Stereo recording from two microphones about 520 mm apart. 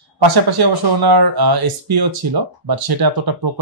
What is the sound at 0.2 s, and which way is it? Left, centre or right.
Speech, right.